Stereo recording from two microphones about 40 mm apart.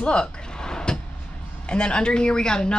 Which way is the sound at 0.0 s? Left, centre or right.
Left.